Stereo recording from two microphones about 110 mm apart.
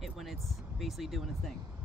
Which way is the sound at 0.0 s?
Centre (ahead or behind).